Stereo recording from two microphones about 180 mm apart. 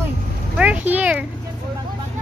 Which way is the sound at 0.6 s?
10° right (ahead or behind).